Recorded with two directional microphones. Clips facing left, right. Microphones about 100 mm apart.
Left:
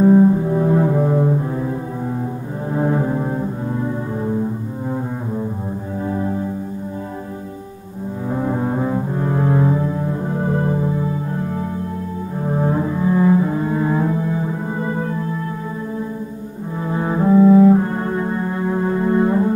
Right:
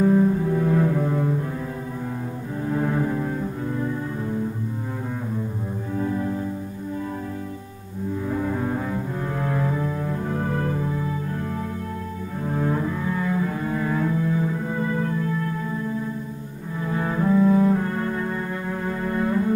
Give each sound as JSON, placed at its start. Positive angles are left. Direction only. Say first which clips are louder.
{"t": 0.0, "sound": "cello", "louder": "left 6 dB", "side_deg": 30}
{"t": 2.8, "sound": "music", "louder": "left 6 dB", "side_deg": 30}
{"t": 8.3, "sound": "double bass", "louder": "left 6 dB", "side_deg": 30}
{"t": 12.4, "sound": "cello", "louder": "left 5 dB", "side_deg": 30}
{"t": 16.8, "sound": "cello", "louder": "left 5 dB", "side_deg": 25}